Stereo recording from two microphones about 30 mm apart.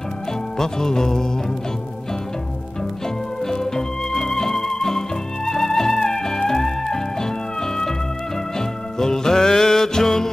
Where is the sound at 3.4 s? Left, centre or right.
Centre.